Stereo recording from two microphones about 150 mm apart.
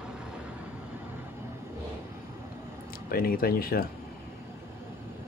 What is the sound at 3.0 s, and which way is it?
Speech, 75° left (ahead or behind).